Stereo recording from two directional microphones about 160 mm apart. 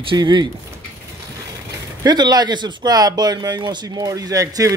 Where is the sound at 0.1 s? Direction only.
30° right (ahead or behind).